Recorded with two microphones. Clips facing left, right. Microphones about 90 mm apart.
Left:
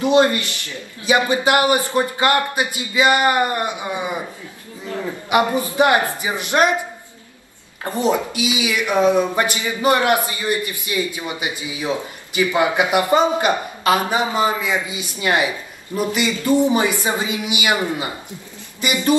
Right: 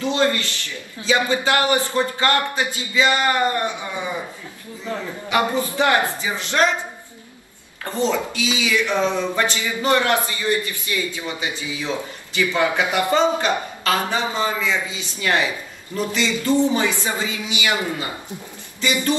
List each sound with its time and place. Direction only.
0.0 s speech: 20° left (ahead or behind)
5.3 s speech: 15° left (ahead or behind)
7.8 s speech: 15° left (ahead or behind)